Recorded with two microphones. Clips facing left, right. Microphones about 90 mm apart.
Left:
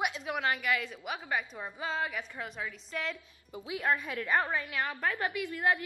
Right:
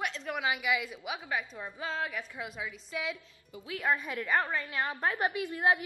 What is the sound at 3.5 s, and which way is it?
Speech, 30° left (ahead or behind).